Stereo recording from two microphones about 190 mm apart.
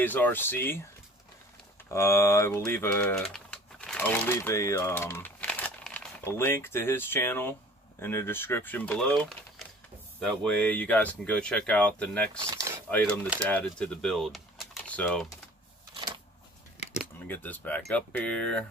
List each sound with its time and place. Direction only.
0.0 s speech: 10° left (ahead or behind)
1.9 s speech: 15° left (ahead or behind)
10.4 s speech: 5° left (ahead or behind)
12.4 s a sound: 15° right (ahead or behind)
12.9 s speech: 10° left (ahead or behind)
17.2 s speech: 10° left (ahead or behind)